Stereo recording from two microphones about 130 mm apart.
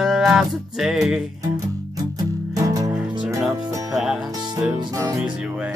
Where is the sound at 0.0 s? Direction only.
5° right (ahead or behind).